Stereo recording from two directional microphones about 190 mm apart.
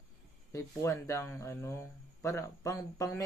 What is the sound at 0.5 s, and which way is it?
Speech, 15° left (ahead or behind).